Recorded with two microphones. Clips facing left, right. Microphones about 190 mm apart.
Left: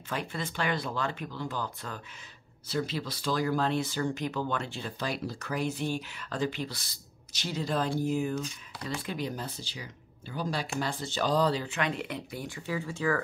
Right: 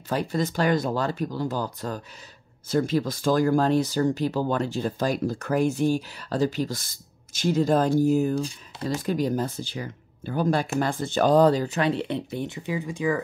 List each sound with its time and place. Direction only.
0.1 s speech: 40° right (ahead or behind); by 13.2 s 15° right (ahead or behind)